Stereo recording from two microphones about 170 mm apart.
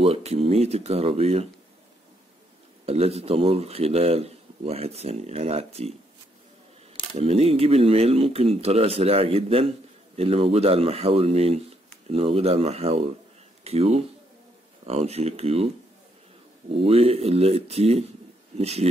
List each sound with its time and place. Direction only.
0.0 s speech: 35° right (ahead or behind)
2.8 s speech: 35° right (ahead or behind)
7.2 s speech: 35° right (ahead or behind)
16.7 s speech: 35° right (ahead or behind)